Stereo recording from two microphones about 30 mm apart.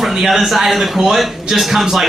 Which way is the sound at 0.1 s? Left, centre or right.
Centre.